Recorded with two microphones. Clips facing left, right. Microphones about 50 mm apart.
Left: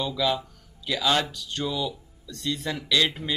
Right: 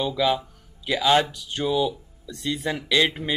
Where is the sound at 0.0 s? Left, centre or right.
Centre.